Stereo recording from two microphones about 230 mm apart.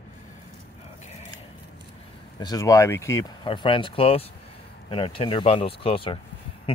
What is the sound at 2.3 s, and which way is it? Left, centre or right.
Speech, centre.